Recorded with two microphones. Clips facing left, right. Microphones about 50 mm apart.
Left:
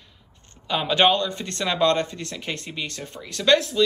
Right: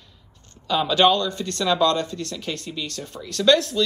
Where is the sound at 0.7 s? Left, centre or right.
Left.